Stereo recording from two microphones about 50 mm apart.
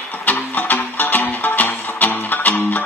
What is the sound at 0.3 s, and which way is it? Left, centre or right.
Music, left.